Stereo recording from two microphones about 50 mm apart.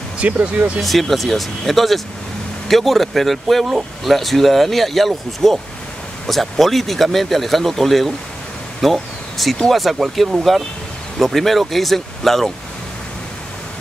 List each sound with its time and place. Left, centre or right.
0.2 s speech: right
0.7 s speech: centre